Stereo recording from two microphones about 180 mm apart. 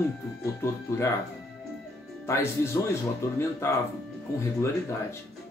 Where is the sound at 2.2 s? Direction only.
15° left (ahead or behind).